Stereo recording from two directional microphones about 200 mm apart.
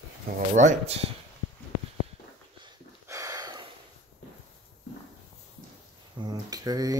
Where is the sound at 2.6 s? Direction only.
15° right (ahead or behind).